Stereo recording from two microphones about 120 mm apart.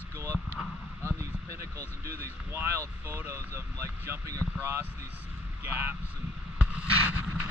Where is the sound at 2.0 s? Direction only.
20° right (ahead or behind).